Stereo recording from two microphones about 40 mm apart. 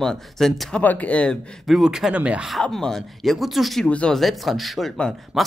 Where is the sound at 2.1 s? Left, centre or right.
Right.